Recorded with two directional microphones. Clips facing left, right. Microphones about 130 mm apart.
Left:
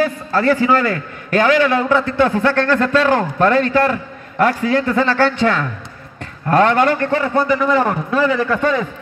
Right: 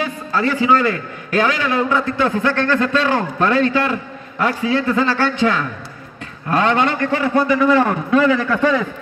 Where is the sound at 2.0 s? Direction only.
50° left (ahead or behind).